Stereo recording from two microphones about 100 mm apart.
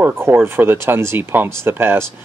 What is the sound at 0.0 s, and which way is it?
Speech, 20° right (ahead or behind).